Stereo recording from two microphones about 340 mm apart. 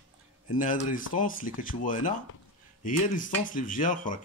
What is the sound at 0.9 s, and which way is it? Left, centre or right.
Speech, left.